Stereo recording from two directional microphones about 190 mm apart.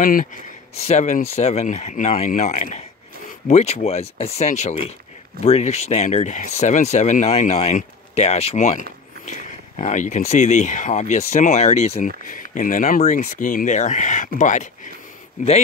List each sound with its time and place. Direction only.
0.0 s speech: 45° left (ahead or behind)